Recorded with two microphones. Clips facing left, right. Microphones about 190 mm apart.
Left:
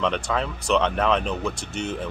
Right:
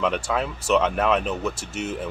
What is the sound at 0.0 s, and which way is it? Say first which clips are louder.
Speech: right 1 dB; 5° right (ahead or behind).